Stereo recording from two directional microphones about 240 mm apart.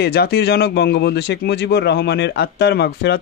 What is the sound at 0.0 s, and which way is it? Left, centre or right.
Speech, left.